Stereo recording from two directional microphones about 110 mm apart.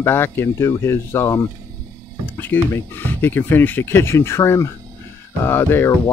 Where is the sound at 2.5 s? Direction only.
20° left (ahead or behind).